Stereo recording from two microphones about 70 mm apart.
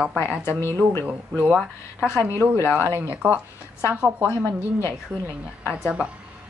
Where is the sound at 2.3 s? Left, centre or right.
Left.